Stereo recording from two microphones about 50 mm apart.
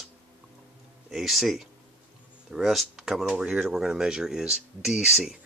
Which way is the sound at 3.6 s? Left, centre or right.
Centre.